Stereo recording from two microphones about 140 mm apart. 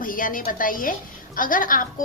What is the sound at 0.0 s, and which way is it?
A woman's voice, 80° left.